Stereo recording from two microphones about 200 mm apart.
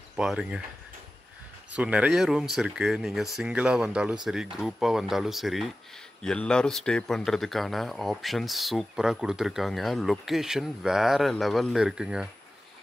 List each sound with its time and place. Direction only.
0.1 s speech: 5° right (ahead or behind)
1.7 s speech: 5° right (ahead or behind)